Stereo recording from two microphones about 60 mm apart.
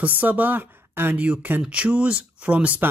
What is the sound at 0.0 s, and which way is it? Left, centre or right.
Speech, right.